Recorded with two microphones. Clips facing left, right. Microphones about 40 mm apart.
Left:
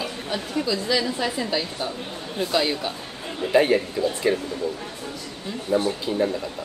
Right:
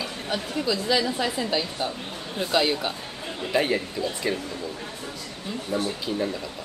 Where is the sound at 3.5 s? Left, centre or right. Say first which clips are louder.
Left 5 dB; centre.